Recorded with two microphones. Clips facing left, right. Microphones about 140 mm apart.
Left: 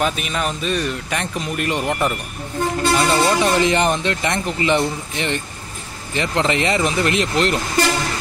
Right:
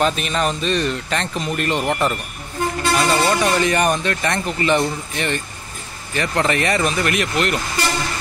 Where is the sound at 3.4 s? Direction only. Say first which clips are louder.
Left 1 dB; 20° left (ahead or behind).